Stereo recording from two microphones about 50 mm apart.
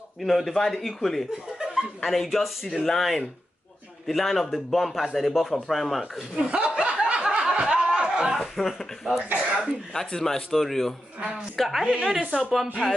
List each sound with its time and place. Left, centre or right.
0.2 s a man's voice: centre
1.6 s chuckle: centre
2.0 s a man's voice: centre
6.5 s chuckle: right
7.7 s a sound: centre
8.4 s a man's voice: centre
12.2 s a woman's voice: centre